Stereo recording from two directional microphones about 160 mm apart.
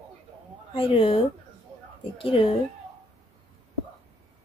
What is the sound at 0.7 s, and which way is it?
Speech, 35° left (ahead or behind).